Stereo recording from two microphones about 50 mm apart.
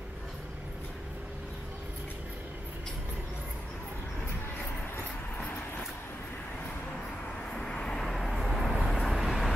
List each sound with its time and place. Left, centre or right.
7.5 s vehicle: centre
8.3 s vehicle: centre